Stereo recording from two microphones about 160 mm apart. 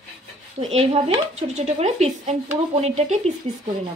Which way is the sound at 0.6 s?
45° right (ahead or behind).